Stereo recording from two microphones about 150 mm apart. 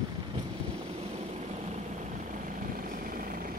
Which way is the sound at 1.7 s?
55° right (ahead or behind).